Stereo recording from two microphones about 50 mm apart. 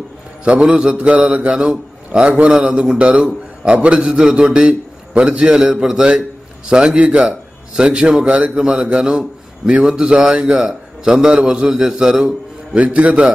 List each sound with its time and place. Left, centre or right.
0.5 s a man's voice: right
12.7 s a man's voice: right